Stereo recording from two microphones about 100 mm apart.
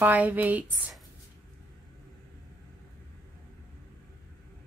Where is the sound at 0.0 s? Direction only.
15° right (ahead or behind).